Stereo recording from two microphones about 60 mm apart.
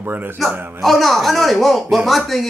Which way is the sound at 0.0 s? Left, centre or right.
Right.